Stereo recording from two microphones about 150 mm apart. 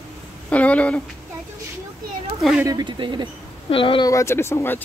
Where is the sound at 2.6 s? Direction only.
30° right (ahead or behind).